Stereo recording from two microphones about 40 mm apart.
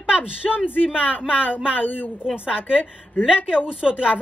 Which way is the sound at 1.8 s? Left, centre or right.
Left.